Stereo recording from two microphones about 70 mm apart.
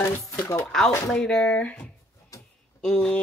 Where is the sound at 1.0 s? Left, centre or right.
Centre.